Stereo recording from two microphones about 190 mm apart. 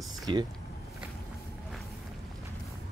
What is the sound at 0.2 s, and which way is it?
Speech, 25° right (ahead or behind).